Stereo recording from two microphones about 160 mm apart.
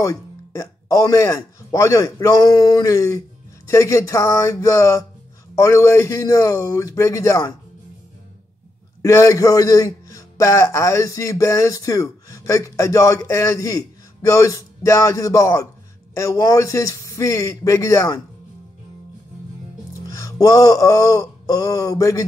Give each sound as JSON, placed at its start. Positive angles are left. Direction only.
{"t": 0.0, "sound": "speech", "side_deg": 20}
{"t": 9.0, "sound": "speech", "side_deg": 20}
{"t": 19.9, "sound": "music", "side_deg": 20}